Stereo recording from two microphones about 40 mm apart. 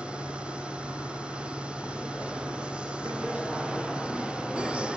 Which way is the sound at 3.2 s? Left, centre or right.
Right.